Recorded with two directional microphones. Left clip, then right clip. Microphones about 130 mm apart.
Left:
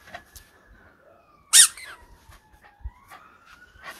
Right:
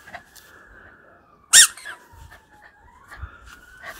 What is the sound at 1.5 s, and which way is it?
Squeak, 55° right (ahead or behind).